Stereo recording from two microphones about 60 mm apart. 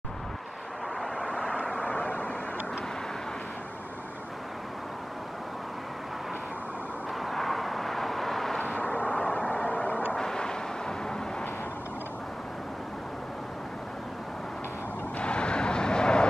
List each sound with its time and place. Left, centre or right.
1.0 s vehicle: centre
7.2 s vehicle: centre
8.5 s vehicle: left
10.1 s vehicle: centre
15.1 s vehicle: centre